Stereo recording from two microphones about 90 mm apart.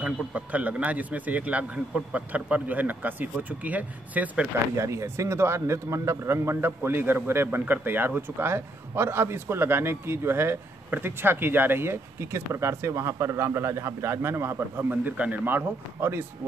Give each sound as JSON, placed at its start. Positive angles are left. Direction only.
{"t": 0.0, "sound": "a man's voice", "side_deg": -15}
{"t": 4.7, "sound": "a man's voice", "side_deg": -35}